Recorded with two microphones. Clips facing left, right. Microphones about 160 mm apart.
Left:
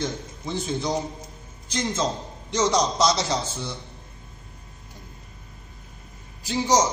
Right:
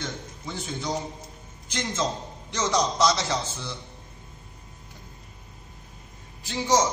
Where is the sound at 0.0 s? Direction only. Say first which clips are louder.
Left 5 dB; 35° left (ahead or behind).